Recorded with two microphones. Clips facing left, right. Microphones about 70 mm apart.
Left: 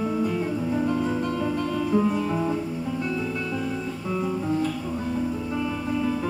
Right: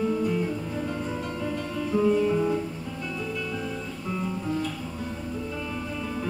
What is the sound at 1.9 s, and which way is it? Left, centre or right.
Music, centre.